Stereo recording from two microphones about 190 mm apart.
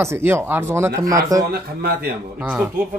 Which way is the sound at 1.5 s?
50° right (ahead or behind).